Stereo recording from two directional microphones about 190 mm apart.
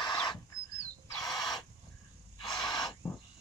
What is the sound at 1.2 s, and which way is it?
Owl, centre (ahead or behind).